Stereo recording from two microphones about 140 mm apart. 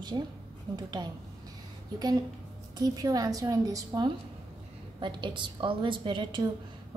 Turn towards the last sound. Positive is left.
turn(degrees=-35)  # may be behind; listen again after turning